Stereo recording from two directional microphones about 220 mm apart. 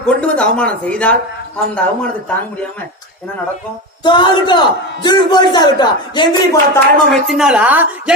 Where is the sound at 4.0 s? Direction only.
20° left (ahead or behind).